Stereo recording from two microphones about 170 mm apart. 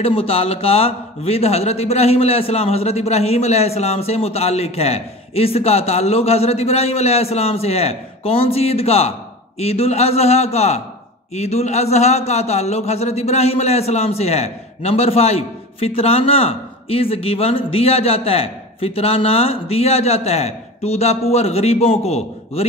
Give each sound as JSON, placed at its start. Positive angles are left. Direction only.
{"t": 0.0, "sound": "a man's voice", "side_deg": 35}